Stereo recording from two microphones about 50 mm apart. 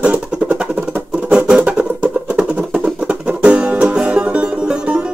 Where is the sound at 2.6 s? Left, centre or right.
Right.